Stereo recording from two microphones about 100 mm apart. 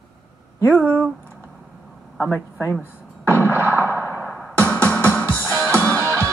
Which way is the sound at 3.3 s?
15° left (ahead or behind).